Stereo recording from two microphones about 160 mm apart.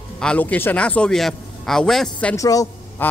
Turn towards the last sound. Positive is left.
turn(degrees=20)  # may be behind; listen again after turning